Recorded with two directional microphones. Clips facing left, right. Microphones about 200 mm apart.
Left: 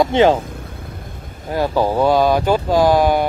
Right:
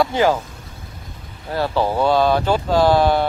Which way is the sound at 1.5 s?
15° left (ahead or behind).